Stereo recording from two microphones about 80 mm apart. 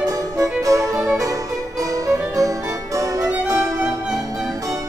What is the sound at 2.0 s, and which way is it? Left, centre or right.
Music, right.